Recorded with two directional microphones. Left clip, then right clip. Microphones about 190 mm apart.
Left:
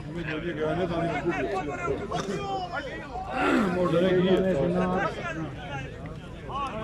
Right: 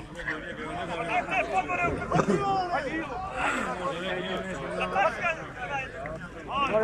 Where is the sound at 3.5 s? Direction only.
50° left (ahead or behind).